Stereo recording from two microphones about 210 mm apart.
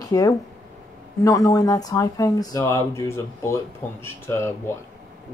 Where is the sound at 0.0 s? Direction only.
15° left (ahead or behind).